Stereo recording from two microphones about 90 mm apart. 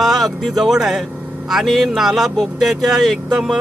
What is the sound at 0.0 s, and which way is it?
Speech, centre (ahead or behind).